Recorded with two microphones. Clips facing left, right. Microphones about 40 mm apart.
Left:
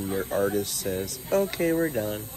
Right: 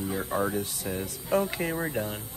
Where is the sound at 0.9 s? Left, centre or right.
Centre.